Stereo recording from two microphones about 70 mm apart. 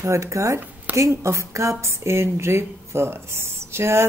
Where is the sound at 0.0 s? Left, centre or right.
Right.